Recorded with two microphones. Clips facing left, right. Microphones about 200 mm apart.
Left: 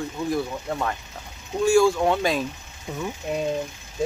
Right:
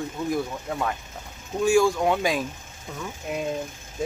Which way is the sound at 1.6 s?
15° right (ahead or behind).